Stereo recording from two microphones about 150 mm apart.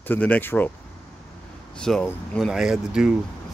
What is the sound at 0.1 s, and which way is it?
Speech, 10° left (ahead or behind).